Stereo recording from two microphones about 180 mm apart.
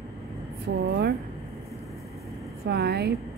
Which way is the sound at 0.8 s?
70° right (ahead or behind).